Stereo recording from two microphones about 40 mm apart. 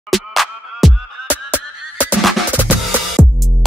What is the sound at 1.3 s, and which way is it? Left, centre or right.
Goose, right.